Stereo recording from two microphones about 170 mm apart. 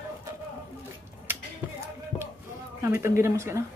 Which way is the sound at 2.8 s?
15° right (ahead or behind).